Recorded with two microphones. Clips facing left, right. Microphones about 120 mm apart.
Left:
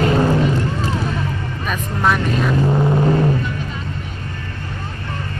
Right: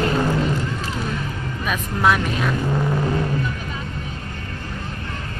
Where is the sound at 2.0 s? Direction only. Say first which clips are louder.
Left 1 dB; centre (ahead or behind).